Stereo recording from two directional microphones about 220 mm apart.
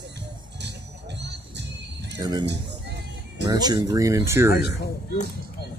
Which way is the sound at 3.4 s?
20° right (ahead or behind).